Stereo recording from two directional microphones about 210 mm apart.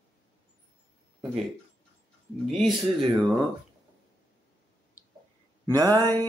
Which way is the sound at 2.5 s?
Centre (ahead or behind).